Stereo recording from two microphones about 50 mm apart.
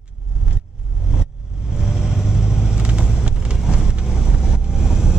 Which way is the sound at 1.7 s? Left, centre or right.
Centre.